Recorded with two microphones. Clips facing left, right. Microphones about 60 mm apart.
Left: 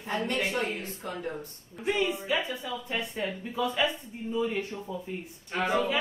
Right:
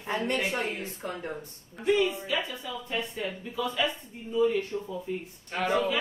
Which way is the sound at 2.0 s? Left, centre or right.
Centre.